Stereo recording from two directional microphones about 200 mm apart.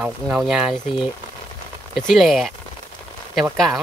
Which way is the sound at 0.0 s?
5° right (ahead or behind).